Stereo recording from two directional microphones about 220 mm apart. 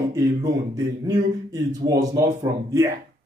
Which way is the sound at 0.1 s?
15° right (ahead or behind).